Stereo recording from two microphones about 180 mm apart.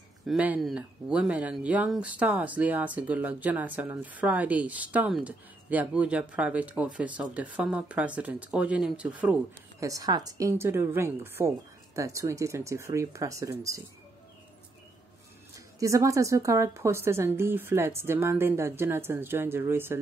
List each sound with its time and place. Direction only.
0.3 s speech: 5° right (ahead or behind)
9.8 s speech: 20° right (ahead or behind)
15.8 s speech: 15° right (ahead or behind)